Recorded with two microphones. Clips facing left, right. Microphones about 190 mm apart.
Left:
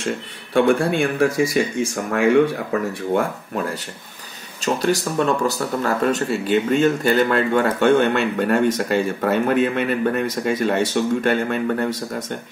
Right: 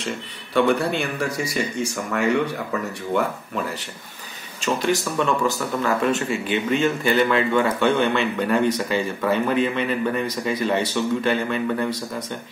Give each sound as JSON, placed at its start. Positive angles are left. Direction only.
{"t": 0.6, "sound": "speech", "side_deg": 50}
{"t": 4.6, "sound": "speech", "side_deg": 40}